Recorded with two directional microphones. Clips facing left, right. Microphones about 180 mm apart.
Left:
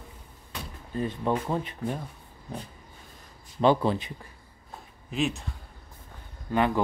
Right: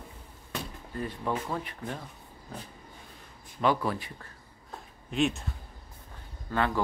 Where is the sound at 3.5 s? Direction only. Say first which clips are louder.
Left 5 dB; 25° left (ahead or behind).